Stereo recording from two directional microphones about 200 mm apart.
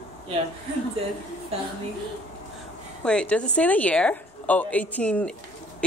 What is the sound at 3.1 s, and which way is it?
A woman's voice, 5° left (ahead or behind).